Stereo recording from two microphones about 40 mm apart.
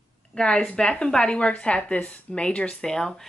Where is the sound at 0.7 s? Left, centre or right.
Left.